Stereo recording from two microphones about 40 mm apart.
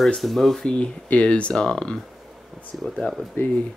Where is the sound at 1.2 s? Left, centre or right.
Left.